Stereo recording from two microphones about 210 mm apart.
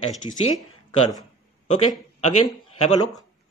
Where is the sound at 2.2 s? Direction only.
30° left (ahead or behind).